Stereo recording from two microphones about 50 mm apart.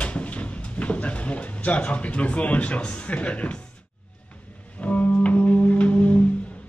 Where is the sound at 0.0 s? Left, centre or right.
Left.